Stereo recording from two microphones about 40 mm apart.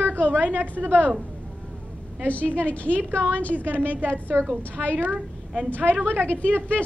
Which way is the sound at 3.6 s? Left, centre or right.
Right.